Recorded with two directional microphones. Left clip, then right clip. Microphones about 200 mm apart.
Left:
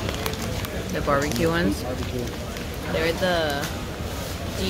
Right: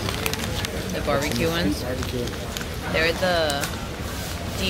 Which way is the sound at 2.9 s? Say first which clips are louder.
Right 2 dB; 20° left (ahead or behind).